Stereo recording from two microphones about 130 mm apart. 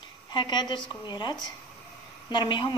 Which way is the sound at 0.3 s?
35° left (ahead or behind).